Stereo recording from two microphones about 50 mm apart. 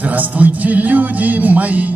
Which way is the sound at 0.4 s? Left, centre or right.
Right.